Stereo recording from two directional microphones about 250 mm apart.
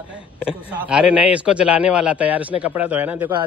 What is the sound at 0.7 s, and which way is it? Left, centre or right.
A man's voice, centre.